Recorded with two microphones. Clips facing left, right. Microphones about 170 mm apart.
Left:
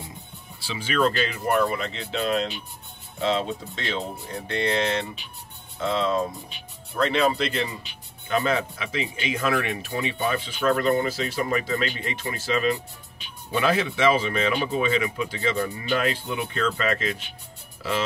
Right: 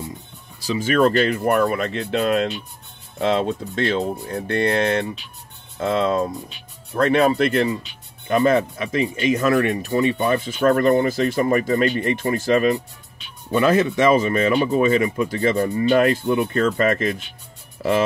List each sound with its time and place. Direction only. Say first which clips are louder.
0.6 s speech: right 7 dB; 45° right (ahead or behind)